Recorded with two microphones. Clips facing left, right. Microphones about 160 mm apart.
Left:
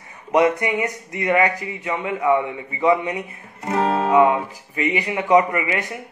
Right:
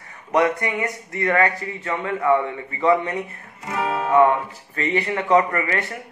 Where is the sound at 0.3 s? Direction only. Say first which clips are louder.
Left 2 dB; 20° left (ahead or behind).